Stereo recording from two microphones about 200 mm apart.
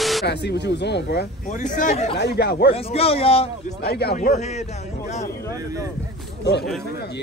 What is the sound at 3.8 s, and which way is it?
Speech, 55° left (ahead or behind).